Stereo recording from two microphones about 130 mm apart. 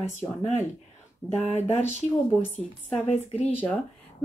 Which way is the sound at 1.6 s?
60° left (ahead or behind).